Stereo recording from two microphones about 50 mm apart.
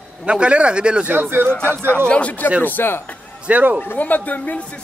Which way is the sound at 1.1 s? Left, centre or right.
Right.